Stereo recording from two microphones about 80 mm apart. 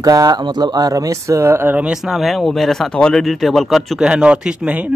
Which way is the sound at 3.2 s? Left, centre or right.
Centre.